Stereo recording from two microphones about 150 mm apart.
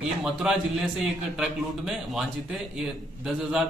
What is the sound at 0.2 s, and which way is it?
A man's voice, 5° right (ahead or behind).